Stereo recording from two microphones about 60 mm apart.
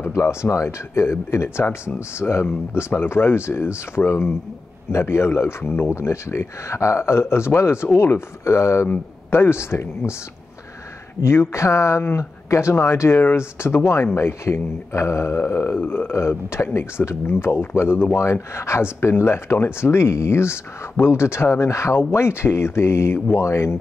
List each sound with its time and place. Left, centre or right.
0.2 s speech: left
5.9 s speech: left
11.1 s speech: left